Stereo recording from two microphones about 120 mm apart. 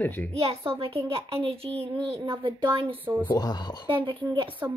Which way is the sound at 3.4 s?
35° left (ahead or behind).